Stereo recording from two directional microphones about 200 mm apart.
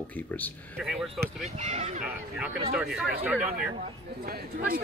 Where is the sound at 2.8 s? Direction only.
5° right (ahead or behind).